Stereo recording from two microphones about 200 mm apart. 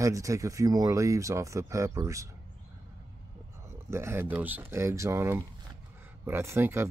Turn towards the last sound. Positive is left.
turn(degrees=-10)  # may be behind; listen again after turning